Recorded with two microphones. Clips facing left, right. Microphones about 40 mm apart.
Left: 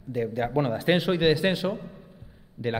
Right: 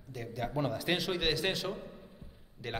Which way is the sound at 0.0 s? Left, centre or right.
Left.